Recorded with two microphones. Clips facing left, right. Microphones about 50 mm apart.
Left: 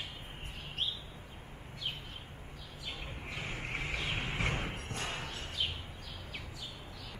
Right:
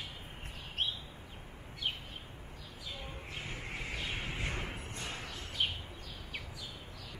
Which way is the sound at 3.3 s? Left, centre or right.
Left.